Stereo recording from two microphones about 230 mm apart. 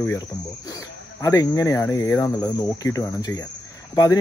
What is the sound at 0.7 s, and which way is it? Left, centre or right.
Speech, centre.